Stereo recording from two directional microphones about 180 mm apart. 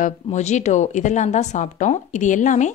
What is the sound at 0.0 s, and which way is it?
A woman's voice, 40° left (ahead or behind).